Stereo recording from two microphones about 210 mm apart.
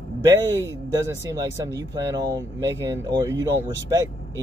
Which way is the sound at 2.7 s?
15° right (ahead or behind).